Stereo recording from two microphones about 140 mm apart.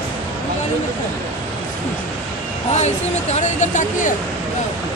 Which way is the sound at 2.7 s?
55° left (ahead or behind).